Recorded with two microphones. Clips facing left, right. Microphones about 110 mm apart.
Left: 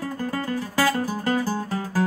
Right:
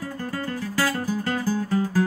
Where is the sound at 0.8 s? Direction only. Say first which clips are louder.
Left 2 dB; 20° left (ahead or behind).